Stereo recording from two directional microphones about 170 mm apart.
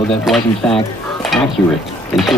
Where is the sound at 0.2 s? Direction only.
Centre (ahead or behind).